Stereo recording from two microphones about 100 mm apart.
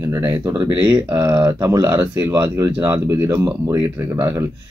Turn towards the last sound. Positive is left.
turn(degrees=-30)  # may be behind; listen again after turning